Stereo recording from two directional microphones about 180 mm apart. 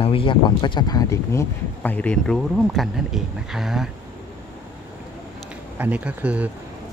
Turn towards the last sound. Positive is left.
turn(degrees=-5)  # may be behind; listen again after turning